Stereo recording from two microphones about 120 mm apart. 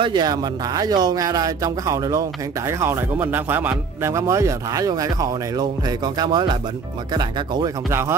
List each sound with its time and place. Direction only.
0.0 s speech: 40° right (ahead or behind)